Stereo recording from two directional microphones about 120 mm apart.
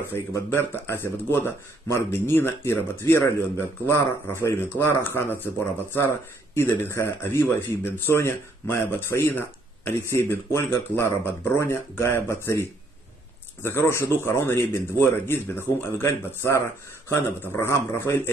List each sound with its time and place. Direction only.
0.0 s speech: 20° left (ahead or behind)